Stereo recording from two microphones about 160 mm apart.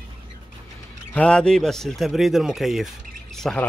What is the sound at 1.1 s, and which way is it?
Speech, 5° left (ahead or behind).